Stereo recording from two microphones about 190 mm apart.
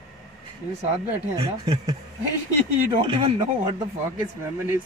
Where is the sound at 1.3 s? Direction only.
20° right (ahead or behind).